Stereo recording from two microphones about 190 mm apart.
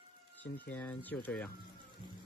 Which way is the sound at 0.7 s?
10° left (ahead or behind).